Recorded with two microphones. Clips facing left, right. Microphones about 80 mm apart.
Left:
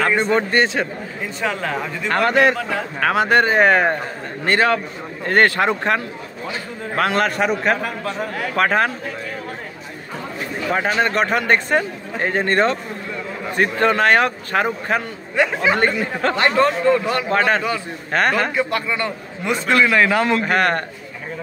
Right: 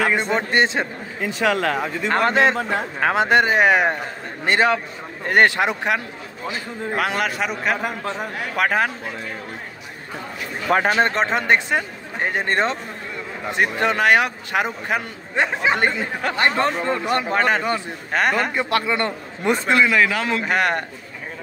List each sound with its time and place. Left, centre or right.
0.5 s speech: right
1.2 s a man's voice: right
2.0 s a man's voice: right
7.0 s a man's voice: centre
7.8 s speech: right
8.2 s a man's voice: centre
10.7 s a man's voice: right; by 15.0 s centre
15.3 s speech: right
17.3 s a man's voice: centre
18.7 s a man's voice: right
19.4 s a man's voice: right
19.7 s speech: centre
20.2 s a man's voice: centre